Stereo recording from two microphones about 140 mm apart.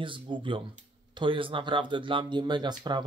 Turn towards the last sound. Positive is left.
turn(degrees=-30)  # may be behind; listen again after turning